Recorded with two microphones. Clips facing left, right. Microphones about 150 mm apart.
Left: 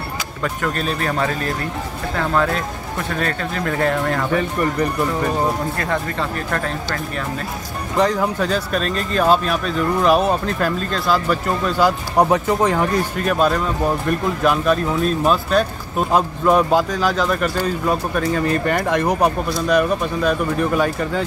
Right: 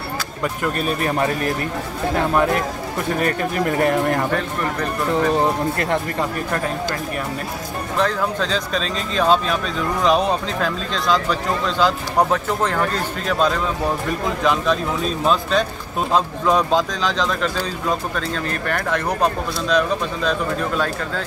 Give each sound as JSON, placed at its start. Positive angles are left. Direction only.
{"t": 0.4, "sound": "speech", "side_deg": -10}
{"t": 4.3, "sound": "speech", "side_deg": 10}
{"t": 5.8, "sound": "speech", "side_deg": -20}
{"t": 8.0, "sound": "speech", "side_deg": 15}